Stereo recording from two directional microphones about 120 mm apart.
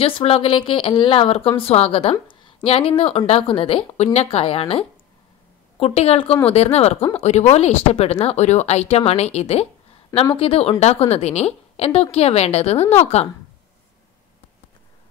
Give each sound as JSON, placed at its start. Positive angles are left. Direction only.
{"t": 0.0, "sound": "speech", "side_deg": 55}